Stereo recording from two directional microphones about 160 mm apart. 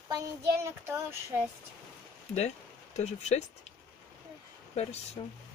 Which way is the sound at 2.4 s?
45° left (ahead or behind).